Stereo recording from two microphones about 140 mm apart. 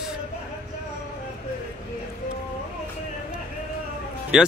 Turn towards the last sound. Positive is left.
turn(degrees=-5)  # may be behind; listen again after turning